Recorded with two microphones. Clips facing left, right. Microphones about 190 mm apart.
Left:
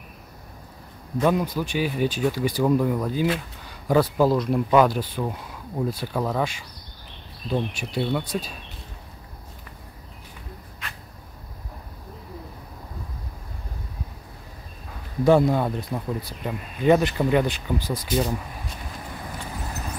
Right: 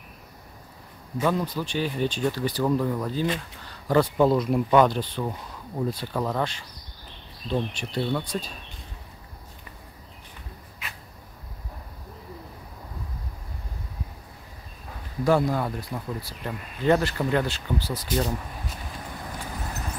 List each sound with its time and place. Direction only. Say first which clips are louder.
1.2 s speech: left 3 dB; 15° left (ahead or behind)
10.8 s vehicle: left 1 dB; 5° right (ahead or behind)
15.2 s speech: left 4 dB; 25° left (ahead or behind)